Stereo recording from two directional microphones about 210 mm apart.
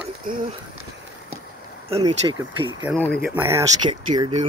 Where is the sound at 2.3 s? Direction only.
10° right (ahead or behind).